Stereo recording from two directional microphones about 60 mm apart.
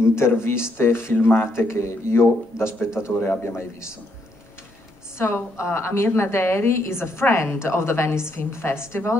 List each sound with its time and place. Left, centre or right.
0.0 s a woman's voice: left
5.2 s a woman's voice: left